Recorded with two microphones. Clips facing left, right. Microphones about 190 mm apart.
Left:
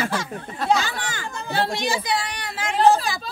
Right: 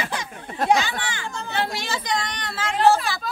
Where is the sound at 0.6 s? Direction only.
50° right (ahead or behind).